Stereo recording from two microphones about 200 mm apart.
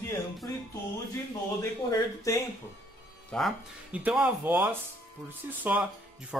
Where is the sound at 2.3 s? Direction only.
15° left (ahead or behind).